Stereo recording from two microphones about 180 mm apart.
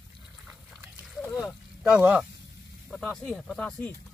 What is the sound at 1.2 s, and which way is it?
Speech, 5° left (ahead or behind).